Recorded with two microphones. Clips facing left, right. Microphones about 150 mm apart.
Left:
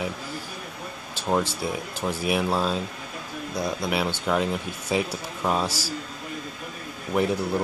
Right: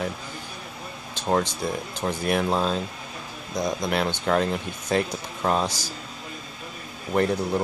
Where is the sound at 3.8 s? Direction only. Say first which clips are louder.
Right 1 dB; 5° left (ahead or behind).